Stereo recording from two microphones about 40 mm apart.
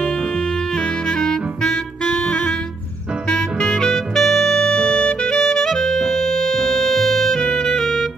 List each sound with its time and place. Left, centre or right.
0.7 s saxophone: centre
3.3 s music: centre